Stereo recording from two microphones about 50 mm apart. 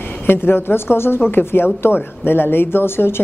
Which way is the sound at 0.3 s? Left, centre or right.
Left.